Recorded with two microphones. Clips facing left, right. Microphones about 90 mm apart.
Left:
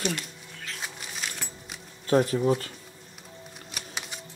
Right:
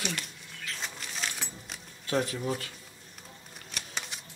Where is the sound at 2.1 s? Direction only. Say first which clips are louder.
Left 8 dB; 40° left (ahead or behind).